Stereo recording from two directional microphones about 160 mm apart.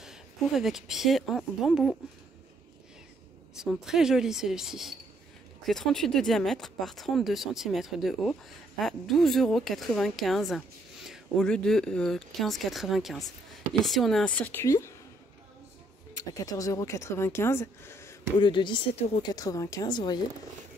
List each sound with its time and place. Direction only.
0.0 s speech: centre (ahead or behind)
3.5 s speech: centre (ahead or behind); by 14.9 s 15° left (ahead or behind)
16.2 s speech: 20° left (ahead or behind)
18.4 s a woman's voice: 30° left (ahead or behind)